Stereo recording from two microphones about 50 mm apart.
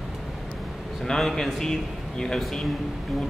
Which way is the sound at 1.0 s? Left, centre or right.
Centre.